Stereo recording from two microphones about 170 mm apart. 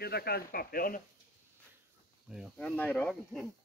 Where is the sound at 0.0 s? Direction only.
65° left (ahead or behind).